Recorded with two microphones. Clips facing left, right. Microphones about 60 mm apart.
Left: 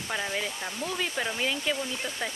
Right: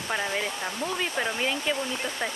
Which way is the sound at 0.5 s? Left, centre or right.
Right.